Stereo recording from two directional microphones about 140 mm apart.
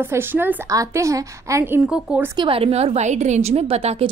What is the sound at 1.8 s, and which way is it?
Speech, 5° right (ahead or behind).